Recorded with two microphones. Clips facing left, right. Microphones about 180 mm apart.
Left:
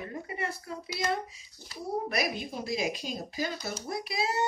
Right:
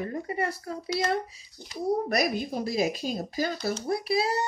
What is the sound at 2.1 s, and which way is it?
Speech, 40° right (ahead or behind).